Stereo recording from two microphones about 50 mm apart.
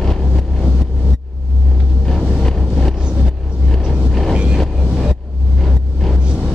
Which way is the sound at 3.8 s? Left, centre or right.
Centre.